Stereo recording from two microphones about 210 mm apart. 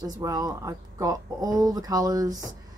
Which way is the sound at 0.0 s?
15° right (ahead or behind).